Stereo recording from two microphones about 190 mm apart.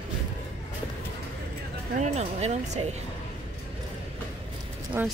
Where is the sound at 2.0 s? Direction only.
35° right (ahead or behind).